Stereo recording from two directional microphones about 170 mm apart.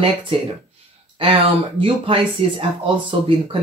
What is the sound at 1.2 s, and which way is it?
Speech, 35° right (ahead or behind).